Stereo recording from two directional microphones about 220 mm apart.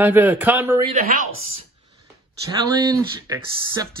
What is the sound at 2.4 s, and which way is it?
Speech, 15° right (ahead or behind).